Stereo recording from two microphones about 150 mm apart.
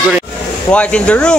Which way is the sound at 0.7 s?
5° left (ahead or behind).